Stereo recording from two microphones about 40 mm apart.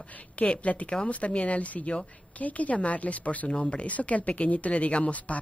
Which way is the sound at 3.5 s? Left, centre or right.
Left.